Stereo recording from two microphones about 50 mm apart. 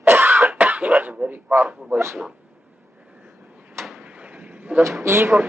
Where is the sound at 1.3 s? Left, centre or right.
Right.